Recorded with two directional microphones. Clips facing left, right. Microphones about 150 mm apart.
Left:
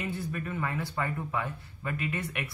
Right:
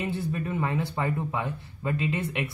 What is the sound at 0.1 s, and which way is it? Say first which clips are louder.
Speech: right 5 dB; 25° right (ahead or behind).